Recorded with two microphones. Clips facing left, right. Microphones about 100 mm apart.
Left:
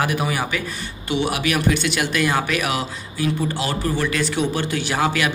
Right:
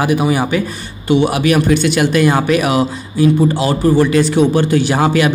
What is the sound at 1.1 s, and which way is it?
Speech, 35° right (ahead or behind).